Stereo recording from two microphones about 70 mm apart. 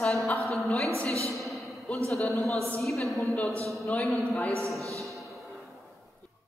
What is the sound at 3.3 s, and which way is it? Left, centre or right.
Speech, left.